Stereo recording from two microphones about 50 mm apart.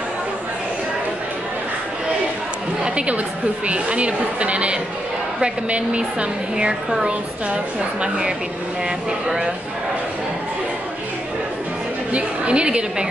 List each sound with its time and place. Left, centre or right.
2.8 s a sound: right
3.6 s a woman's voice: right
12.1 s a woman's voice: right